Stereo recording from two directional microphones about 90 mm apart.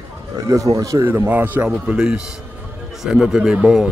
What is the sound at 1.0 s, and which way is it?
Speech, 20° right (ahead or behind).